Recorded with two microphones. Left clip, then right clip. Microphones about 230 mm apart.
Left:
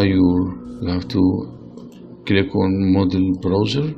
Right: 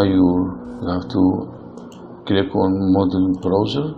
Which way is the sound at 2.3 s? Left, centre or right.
Left.